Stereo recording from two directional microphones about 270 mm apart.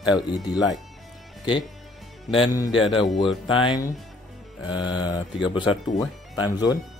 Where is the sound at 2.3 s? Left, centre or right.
Centre.